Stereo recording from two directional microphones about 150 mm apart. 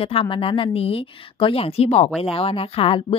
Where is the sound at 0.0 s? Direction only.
40° left (ahead or behind).